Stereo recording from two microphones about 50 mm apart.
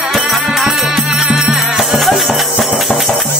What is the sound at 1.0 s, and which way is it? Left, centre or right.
Music, centre.